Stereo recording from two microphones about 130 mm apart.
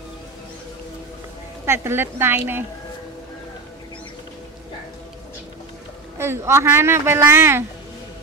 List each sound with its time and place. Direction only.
1.7 s speech: 15° right (ahead or behind)
6.1 s speech: 20° right (ahead or behind)